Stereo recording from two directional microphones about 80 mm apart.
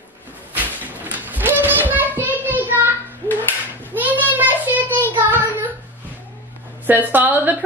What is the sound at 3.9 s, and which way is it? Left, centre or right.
Child singing, right.